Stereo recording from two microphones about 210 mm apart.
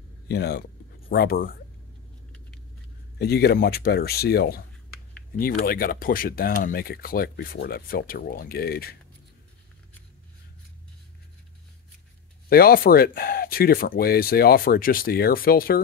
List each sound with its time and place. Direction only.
0.3 s speech: 50° left (ahead or behind)
3.2 s speech: 50° left (ahead or behind)
12.4 s speech: 45° left (ahead or behind)